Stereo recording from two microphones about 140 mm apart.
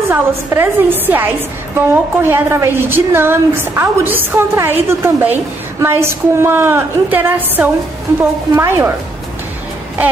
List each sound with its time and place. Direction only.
0.1 s a woman's voice: 15° right (ahead or behind)